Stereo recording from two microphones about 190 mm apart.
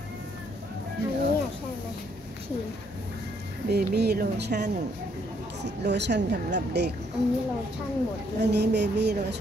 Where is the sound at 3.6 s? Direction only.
60° right (ahead or behind).